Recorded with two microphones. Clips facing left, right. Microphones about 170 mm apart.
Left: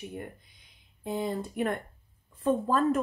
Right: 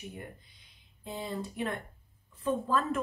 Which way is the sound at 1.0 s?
50° left (ahead or behind).